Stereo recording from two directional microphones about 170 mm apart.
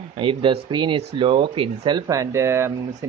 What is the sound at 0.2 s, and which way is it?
Speech, 30° right (ahead or behind).